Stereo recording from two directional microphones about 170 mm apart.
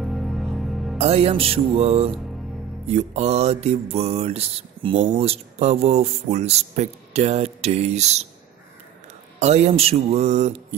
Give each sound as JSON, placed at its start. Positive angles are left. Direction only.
{"t": 0.0, "sound": "music", "side_deg": 0}
{"t": 0.9, "sound": "speech", "side_deg": -35}
{"t": 9.4, "sound": "speech", "side_deg": -40}